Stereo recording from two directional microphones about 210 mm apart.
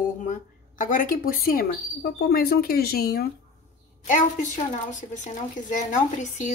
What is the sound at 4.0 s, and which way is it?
A woman's voice, 35° left (ahead or behind).